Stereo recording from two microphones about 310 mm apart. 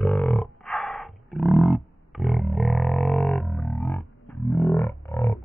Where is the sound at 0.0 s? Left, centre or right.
Centre.